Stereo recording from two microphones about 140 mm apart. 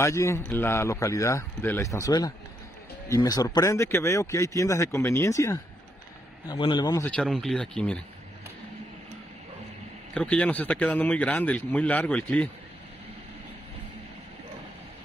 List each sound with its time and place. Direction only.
0.0 s speech: 20° left (ahead or behind)
7.1 s speech: 5° left (ahead or behind)
10.1 s speech: 10° left (ahead or behind)